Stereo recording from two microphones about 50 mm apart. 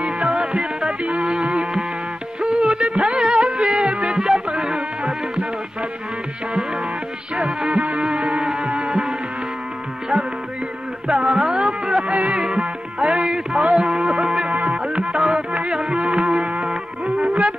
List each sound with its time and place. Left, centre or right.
0.0 s music: right
2.4 s music of bollywood: centre
3.4 s music: centre
4.1 s music: centre
5.0 s music: right
7.3 s music: right
11.1 s music: centre
12.1 s music: right
12.4 s music: centre
15.1 s music: centre